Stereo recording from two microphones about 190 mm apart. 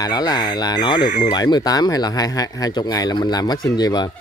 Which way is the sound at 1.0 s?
45° left (ahead or behind).